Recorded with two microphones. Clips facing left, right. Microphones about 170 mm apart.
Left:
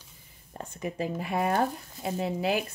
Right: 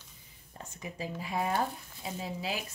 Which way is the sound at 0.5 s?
55° left (ahead or behind).